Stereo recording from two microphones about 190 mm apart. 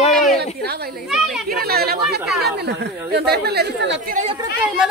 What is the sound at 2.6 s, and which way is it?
Speech, 60° right (ahead or behind).